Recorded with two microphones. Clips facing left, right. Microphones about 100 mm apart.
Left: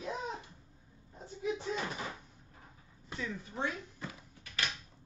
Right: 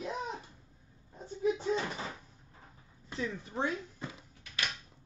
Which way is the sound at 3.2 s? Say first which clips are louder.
Right 3 dB; 30° right (ahead or behind).